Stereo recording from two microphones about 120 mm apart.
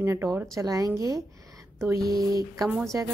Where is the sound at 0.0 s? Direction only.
25° right (ahead or behind).